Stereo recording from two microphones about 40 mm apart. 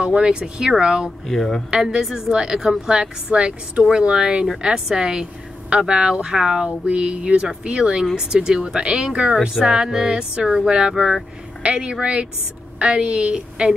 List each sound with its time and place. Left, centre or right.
0.0 s speech: right
1.2 s speech: centre
1.7 s speech: centre
2.0 s music: centre
2.9 s speech: right
4.6 s music: centre
5.7 s speech: right
6.9 s speech: right
9.7 s music: centre
11.6 s speech: right